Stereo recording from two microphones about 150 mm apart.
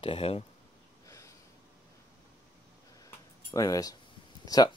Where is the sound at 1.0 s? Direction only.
20° left (ahead or behind).